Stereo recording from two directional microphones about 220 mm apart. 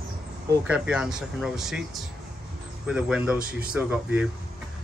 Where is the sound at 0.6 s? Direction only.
5° right (ahead or behind).